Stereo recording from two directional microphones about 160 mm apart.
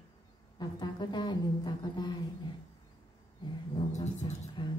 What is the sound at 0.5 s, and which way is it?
Speech, 30° left (ahead or behind).